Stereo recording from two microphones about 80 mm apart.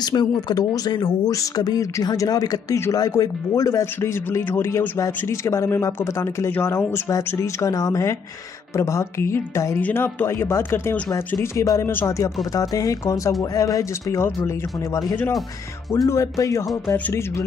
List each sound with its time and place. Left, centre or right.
0.0 s speech: left
1.3 s speech: left
7.2 s speech: left
9.8 s speech: left
11.5 s speech: left
11.8 s speech: left
12.5 s speech: left
16.1 s speech: left